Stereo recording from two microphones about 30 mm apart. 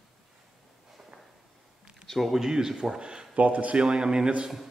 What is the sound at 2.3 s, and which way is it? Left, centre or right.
Speech, centre.